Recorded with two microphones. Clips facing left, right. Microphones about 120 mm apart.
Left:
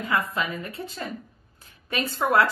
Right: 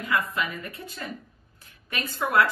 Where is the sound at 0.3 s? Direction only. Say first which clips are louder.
Left 2 dB; 25° left (ahead or behind).